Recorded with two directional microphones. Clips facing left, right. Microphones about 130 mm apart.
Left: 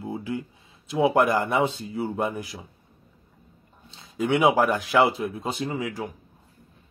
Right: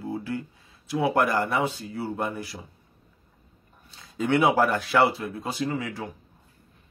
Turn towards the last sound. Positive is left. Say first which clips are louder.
# even
turn(degrees=15)  # may be behind; listen again after turning